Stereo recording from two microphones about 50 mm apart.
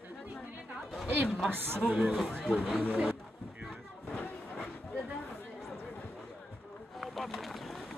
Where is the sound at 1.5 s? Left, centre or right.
Right.